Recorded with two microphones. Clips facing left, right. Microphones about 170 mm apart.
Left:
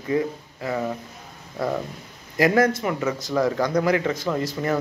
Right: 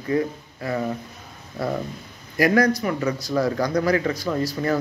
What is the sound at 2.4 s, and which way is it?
Speech, 25° left (ahead or behind).